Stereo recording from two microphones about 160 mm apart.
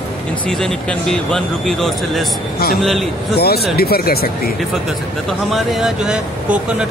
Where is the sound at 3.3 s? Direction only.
80° left.